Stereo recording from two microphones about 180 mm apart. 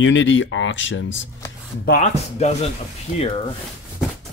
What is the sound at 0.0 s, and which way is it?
Speech, 90° left.